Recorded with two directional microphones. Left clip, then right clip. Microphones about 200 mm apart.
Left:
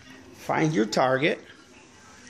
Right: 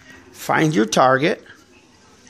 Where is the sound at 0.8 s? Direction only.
35° right (ahead or behind).